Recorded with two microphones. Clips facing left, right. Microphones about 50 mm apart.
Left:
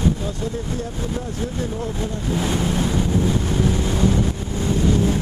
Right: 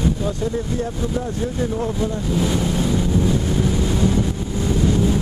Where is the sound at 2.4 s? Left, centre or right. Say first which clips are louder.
Even; left.